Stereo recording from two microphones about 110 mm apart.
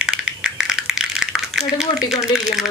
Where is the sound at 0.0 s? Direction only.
5° right (ahead or behind).